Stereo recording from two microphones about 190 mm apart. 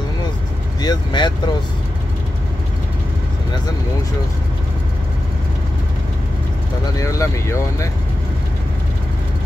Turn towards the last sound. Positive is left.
turn(degrees=15)  # may be behind; listen again after turning